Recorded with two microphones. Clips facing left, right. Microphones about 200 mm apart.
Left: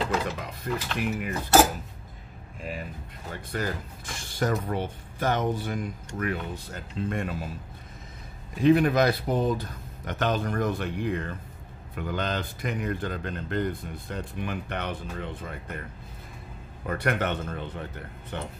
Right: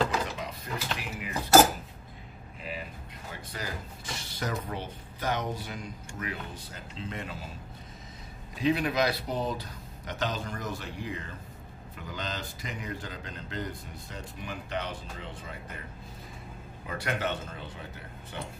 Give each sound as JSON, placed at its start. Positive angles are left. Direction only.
{"t": 0.4, "sound": "speech", "side_deg": 55}
{"t": 3.3, "sound": "speech", "side_deg": 55}
{"t": 8.5, "sound": "speech", "side_deg": 50}
{"t": 16.8, "sound": "speech", "side_deg": 55}